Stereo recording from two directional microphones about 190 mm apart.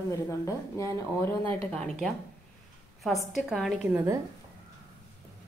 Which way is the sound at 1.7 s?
5° left (ahead or behind).